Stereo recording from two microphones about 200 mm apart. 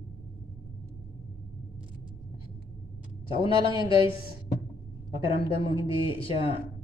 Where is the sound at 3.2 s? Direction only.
25° left (ahead or behind).